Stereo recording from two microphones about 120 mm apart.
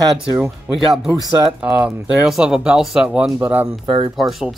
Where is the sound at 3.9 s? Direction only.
40° right (ahead or behind).